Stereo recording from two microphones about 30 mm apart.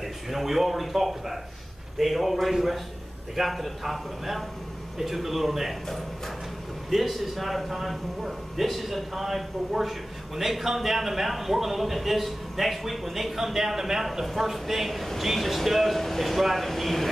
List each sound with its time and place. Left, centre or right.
0.0 s a man's voice: centre
5.9 s speech: centre
6.9 s a man's voice: centre